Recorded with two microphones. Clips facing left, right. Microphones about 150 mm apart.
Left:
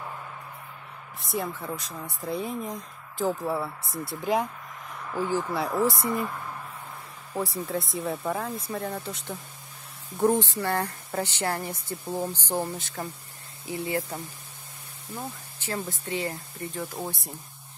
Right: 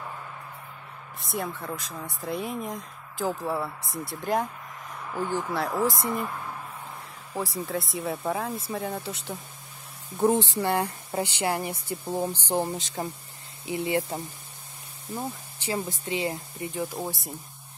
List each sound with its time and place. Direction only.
1.2 s speech: centre (ahead or behind)
7.3 s speech: centre (ahead or behind)
10.1 s speech: 5° right (ahead or behind)